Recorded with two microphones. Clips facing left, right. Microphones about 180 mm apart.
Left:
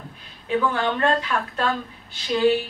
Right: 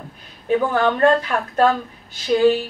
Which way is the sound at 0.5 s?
45° right (ahead or behind).